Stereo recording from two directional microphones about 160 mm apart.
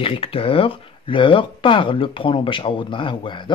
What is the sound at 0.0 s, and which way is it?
Speech, 35° left (ahead or behind).